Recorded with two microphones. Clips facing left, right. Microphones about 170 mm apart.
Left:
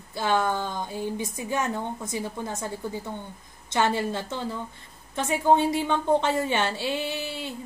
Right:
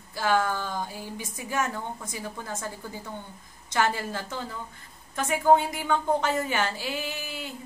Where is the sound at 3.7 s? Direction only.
25° left (ahead or behind).